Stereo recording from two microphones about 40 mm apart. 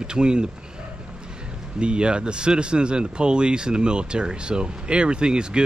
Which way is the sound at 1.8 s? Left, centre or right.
Right.